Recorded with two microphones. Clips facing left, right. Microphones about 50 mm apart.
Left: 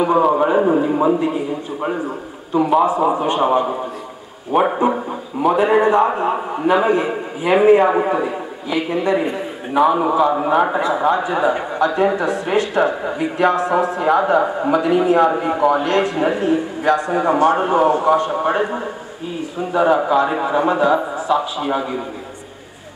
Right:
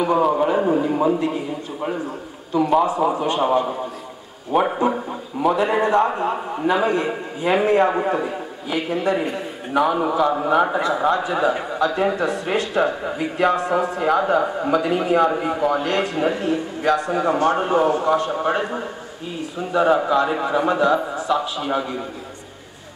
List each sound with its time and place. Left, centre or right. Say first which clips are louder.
0.0 s a man's voice: left 3 dB; centre
2.9 s a man's voice: left 3 dB; centre